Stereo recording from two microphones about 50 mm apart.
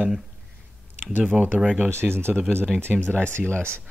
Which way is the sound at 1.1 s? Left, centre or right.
Right.